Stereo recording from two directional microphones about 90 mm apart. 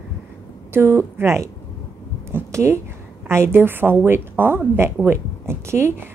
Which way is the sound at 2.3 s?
30° right (ahead or behind).